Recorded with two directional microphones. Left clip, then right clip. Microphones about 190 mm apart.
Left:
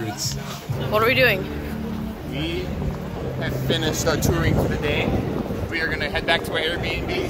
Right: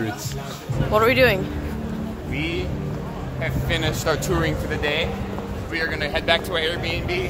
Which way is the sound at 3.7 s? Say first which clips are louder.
Even; 15° right (ahead or behind).